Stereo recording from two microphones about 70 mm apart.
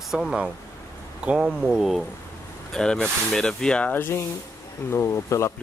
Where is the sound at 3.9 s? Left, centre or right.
Left.